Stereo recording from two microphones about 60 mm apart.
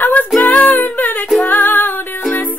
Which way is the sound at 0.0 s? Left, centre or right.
Left.